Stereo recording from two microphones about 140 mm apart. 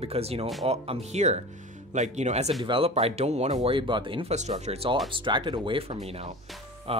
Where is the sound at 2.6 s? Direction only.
40° right (ahead or behind).